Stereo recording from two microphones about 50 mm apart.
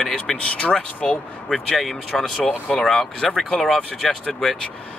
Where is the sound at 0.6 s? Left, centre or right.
Left.